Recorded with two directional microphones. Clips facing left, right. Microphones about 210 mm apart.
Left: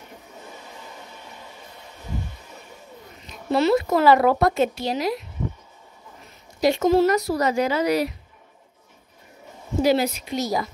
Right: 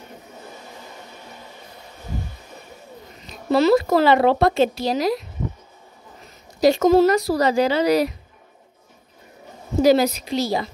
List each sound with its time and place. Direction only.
3.3 s speech: 40° right (ahead or behind)
6.6 s speech: 40° right (ahead or behind)
9.8 s speech: 40° right (ahead or behind)